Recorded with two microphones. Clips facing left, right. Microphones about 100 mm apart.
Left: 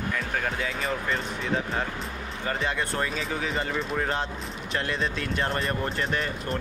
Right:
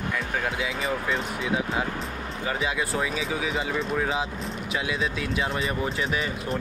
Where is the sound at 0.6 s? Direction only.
5° right (ahead or behind).